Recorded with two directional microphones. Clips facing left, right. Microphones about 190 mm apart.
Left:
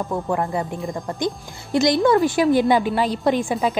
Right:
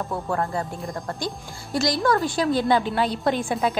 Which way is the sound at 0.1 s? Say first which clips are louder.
Left 3 dB; 15° left (ahead or behind).